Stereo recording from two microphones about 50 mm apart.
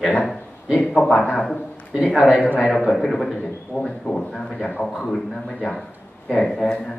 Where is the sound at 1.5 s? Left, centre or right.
Left.